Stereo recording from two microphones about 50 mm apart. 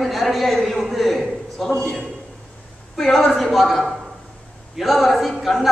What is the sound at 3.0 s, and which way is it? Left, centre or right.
A man's voice, centre.